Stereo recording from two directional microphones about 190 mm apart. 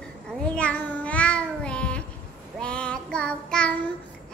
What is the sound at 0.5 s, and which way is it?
Child singing, 5° left (ahead or behind).